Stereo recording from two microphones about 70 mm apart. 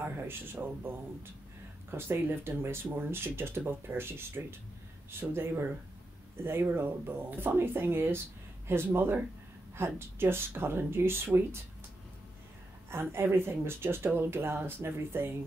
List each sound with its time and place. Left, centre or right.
0.0 s speech: right
12.9 s speech: right